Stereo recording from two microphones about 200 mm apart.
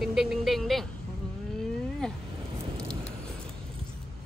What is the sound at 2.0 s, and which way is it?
Speech, 5° left (ahead or behind).